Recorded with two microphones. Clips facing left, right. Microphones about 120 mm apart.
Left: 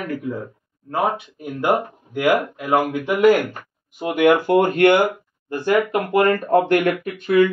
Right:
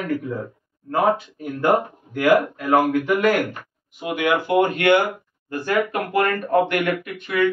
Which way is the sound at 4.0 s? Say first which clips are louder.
Left 5 dB; 45° left (ahead or behind).